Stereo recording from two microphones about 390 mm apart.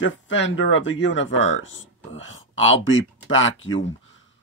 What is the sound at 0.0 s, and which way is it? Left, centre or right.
Speech, left.